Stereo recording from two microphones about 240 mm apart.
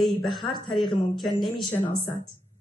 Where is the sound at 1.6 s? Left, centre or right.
Centre.